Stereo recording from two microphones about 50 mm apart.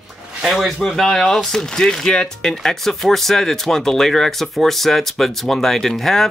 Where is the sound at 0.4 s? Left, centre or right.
Centre.